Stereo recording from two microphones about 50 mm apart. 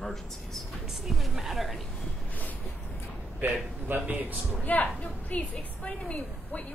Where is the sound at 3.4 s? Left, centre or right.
Right.